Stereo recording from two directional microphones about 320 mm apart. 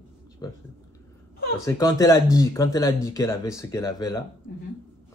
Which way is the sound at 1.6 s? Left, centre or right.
Centre.